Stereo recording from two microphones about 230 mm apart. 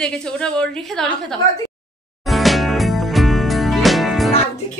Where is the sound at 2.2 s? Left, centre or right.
Centre.